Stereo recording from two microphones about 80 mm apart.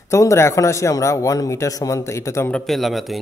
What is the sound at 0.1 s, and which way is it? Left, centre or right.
Speech, left.